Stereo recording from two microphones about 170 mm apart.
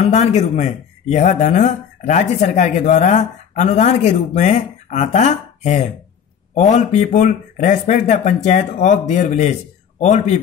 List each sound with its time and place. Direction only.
0.0 s speech: 40° left (ahead or behind)